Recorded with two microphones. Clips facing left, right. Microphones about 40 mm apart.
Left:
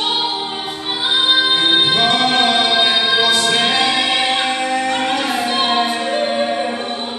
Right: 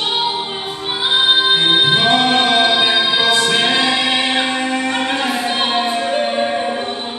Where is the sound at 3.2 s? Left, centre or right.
Right.